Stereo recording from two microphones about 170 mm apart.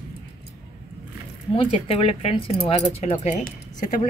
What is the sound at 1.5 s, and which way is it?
Speech, 35° left (ahead or behind).